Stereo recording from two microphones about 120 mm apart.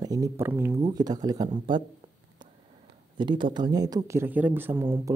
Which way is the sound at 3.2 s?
40° right (ahead or behind).